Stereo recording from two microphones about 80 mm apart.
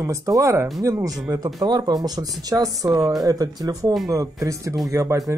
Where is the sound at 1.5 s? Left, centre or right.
Right.